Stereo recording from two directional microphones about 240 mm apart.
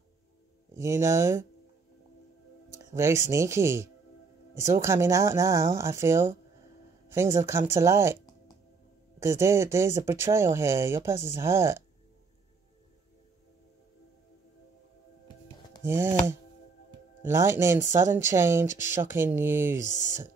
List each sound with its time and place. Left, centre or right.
0.7 s speech: centre
2.7 s music: centre
3.3 s speech: centre
9.4 s speech: centre
15.8 s speech: centre
19.9 s speech: left